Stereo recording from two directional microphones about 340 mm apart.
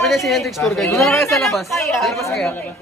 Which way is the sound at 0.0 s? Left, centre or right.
Centre.